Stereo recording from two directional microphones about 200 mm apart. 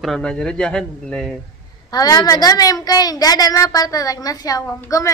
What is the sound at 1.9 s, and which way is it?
A woman's voice, 20° left (ahead or behind).